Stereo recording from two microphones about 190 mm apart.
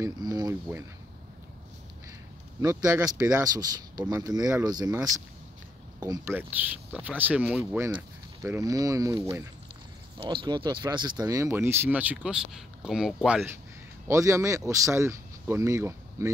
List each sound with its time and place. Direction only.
0.0 s speech: 20° right (ahead or behind)
2.6 s speech: 15° right (ahead or behind); by 13.5 s centre (ahead or behind)
14.0 s speech: 15° right (ahead or behind)